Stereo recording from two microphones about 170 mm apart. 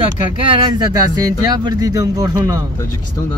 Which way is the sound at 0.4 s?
25° right (ahead or behind).